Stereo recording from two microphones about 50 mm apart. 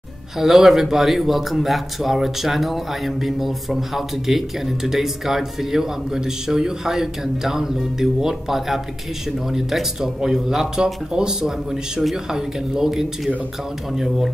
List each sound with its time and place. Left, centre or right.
0.4 s speech: centre